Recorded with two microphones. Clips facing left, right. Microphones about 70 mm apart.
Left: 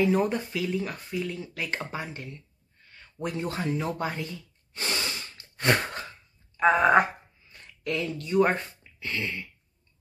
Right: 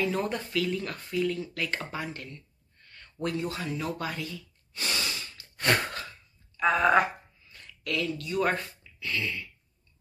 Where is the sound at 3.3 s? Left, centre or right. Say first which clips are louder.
Left 3 dB; left.